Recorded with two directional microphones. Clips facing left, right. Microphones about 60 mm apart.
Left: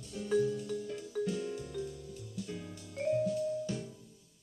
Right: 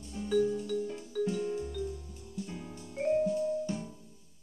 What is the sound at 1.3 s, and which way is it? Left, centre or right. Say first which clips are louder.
Music: right 3 dB; centre.